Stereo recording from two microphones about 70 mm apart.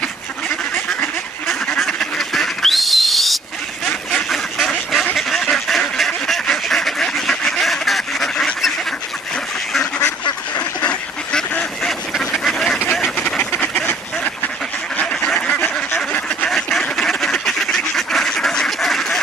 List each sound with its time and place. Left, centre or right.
1.7 s duck: centre
10.5 s duck: centre
13.1 s duck: left
16.9 s duck: centre